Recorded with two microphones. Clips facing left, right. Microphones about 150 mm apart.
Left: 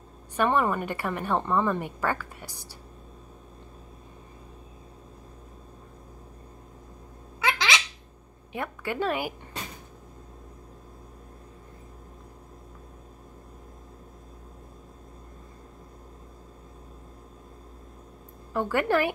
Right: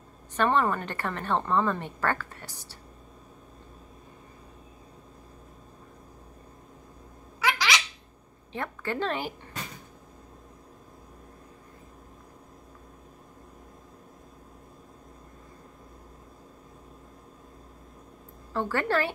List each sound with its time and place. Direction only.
0.4 s a woman's voice: 10° left (ahead or behind)
7.3 s a sound: 25° left (ahead or behind)
8.5 s a woman's voice: 10° left (ahead or behind)
18.5 s a woman's voice: 15° left (ahead or behind)